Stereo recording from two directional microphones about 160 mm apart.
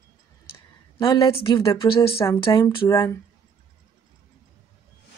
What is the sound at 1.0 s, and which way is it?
Speech, 30° left (ahead or behind).